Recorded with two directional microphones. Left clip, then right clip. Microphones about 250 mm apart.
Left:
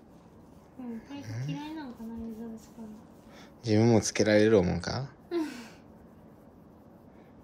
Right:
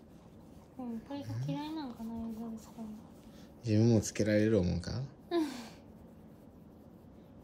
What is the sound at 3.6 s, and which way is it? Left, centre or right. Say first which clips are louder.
Speech: left 6 dB; centre.